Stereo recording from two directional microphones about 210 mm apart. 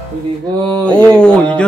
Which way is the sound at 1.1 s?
5° left (ahead or behind).